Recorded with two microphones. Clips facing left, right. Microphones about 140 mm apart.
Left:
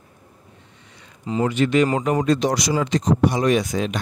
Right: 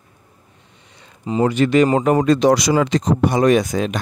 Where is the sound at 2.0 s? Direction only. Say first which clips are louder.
Right 5 dB; 60° right (ahead or behind); by 3.0 s 90° right.